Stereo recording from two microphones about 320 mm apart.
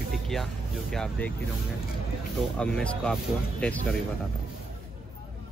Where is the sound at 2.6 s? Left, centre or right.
Centre.